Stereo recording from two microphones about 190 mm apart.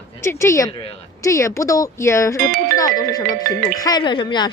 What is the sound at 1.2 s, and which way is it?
A woman's voice, 15° left (ahead or behind).